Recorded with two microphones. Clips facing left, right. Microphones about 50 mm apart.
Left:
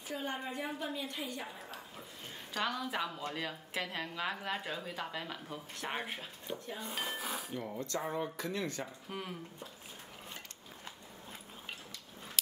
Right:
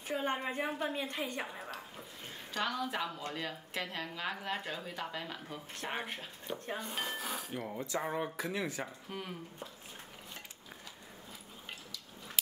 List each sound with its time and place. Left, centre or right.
0.1 s a woman's voice: right
2.5 s a woman's voice: centre
7.5 s speech: centre